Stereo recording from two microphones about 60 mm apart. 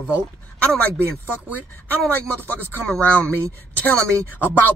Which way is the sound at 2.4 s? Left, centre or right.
Left.